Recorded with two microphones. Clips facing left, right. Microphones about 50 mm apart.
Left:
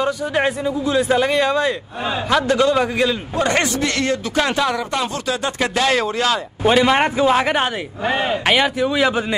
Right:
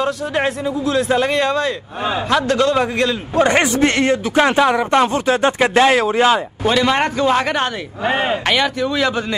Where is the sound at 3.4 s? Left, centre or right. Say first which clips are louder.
Right 5 dB; right.